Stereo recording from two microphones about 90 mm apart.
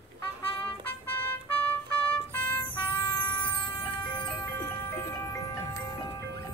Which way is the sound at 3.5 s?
70° left (ahead or behind).